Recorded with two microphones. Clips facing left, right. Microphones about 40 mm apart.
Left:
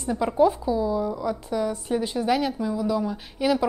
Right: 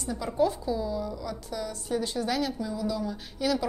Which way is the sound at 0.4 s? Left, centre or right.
Centre.